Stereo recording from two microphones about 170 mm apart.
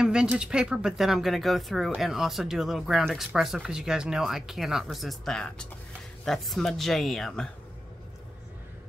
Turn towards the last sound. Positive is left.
turn(degrees=0)  # may be behind; listen again after turning